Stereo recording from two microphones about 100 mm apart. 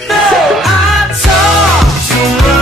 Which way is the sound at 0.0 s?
Centre (ahead or behind).